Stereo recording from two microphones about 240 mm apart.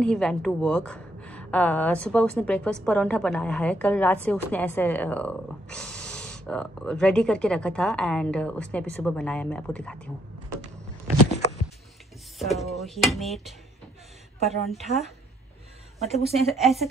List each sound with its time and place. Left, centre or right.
0.0 s a woman's voice: centre
12.4 s a woman's voice: centre